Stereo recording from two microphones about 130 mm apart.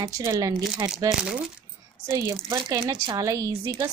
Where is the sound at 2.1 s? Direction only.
25° right (ahead or behind).